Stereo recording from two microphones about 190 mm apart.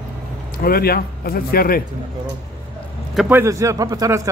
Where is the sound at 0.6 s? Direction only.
50° left (ahead or behind).